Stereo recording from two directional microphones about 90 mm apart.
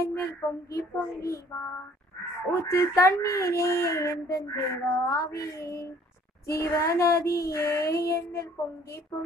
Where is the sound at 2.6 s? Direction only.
35° left (ahead or behind).